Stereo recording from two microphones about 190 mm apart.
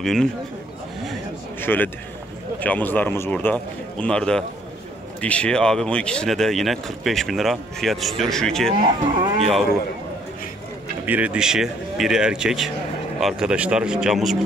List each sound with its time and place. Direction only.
0.0 s speech: centre (ahead or behind)
1.6 s a man's voice: 10° left (ahead or behind)
8.7 s livestock: 25° right (ahead or behind)
11.1 s speech: 5° right (ahead or behind)